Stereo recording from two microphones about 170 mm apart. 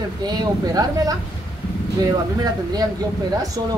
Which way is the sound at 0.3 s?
25° right (ahead or behind).